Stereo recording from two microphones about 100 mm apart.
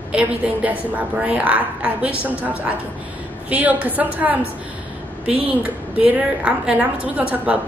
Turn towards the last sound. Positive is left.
turn(degrees=-15)  # may be behind; listen again after turning